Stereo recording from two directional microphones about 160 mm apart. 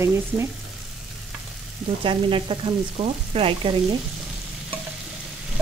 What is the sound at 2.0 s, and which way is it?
Frying, 35° right (ahead or behind).